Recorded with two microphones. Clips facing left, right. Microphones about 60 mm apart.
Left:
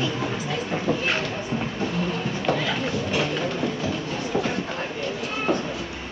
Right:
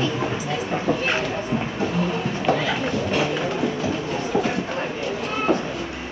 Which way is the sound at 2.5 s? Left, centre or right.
Centre.